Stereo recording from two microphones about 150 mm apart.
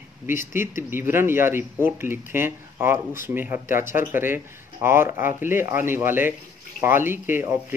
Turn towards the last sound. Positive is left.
turn(degrees=-15)  # may be behind; listen again after turning